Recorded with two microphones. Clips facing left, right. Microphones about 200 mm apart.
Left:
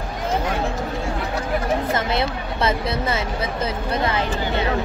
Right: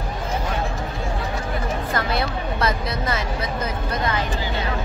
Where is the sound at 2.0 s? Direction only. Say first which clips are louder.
Left 1 dB; 25° left (ahead or behind).